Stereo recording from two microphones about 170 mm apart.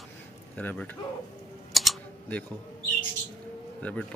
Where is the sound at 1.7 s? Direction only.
Centre (ahead or behind).